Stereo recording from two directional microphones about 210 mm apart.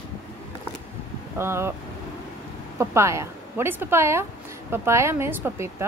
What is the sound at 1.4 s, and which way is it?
Speech, 10° right (ahead or behind).